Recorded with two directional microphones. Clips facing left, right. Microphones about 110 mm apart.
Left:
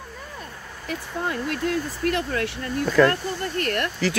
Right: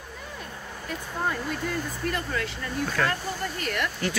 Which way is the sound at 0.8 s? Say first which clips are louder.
Left 2 dB; 70° left (ahead or behind).